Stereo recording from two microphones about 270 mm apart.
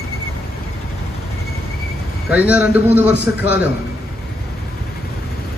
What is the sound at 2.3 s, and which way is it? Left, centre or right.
A man's voice, centre.